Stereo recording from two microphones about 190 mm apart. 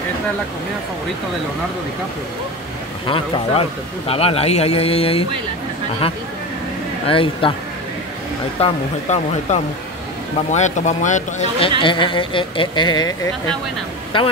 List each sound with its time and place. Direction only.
3.1 s speech: 25° left (ahead or behind)
7.1 s speech: 30° left (ahead or behind)
8.6 s speech: 30° left (ahead or behind)
11.8 s speech: 25° left (ahead or behind)